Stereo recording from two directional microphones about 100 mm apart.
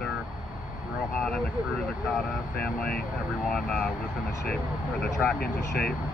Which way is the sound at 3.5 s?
10° left (ahead or behind).